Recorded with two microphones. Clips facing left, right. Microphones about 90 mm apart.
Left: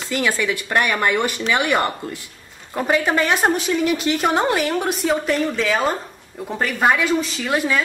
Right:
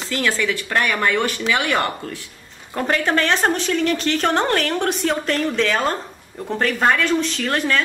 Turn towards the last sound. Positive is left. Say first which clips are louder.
# even
turn(degrees=10)  # may be behind; listen again after turning